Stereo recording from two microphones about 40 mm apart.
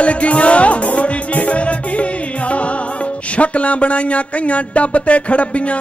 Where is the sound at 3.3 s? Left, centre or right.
Left.